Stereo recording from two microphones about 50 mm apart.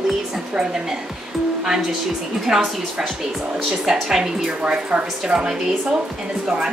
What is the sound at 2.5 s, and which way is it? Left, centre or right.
A woman's voice, centre.